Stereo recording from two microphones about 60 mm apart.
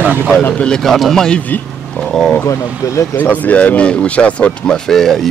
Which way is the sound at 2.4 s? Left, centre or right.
Left.